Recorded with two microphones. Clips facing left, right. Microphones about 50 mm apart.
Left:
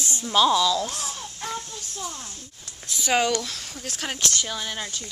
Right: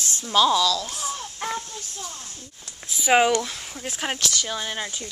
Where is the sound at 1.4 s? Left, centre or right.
Right.